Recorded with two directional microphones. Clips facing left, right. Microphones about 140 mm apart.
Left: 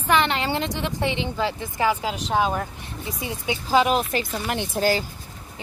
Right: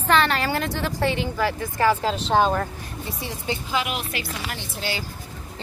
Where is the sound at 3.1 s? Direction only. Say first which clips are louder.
Left 1 dB; 15° left (ahead or behind).